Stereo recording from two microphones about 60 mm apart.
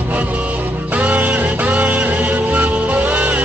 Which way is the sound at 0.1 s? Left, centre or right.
Right.